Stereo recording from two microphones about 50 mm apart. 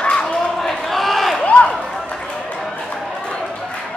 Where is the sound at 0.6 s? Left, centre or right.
Centre.